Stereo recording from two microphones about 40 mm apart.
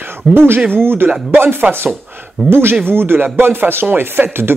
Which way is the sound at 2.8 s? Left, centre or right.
Right.